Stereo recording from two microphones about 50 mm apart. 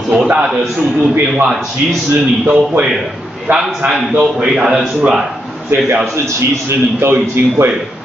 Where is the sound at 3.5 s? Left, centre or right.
Right.